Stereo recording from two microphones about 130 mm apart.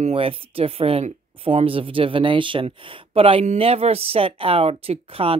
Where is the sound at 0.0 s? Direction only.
50° right (ahead or behind).